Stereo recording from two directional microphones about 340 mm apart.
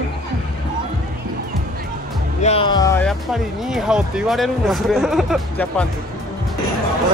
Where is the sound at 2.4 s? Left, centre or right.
Centre.